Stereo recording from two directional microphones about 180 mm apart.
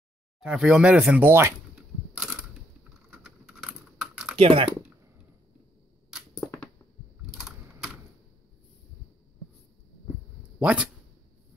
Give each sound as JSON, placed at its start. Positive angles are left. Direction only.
{"t": 0.4, "sound": "speech", "side_deg": -5}
{"t": 3.1, "sound": "typing", "side_deg": -5}
{"t": 4.4, "sound": "speech", "side_deg": -30}
{"t": 6.1, "sound": "a sound", "side_deg": 0}
{"t": 7.2, "sound": "typing", "side_deg": 0}
{"t": 10.6, "sound": "speech", "side_deg": -5}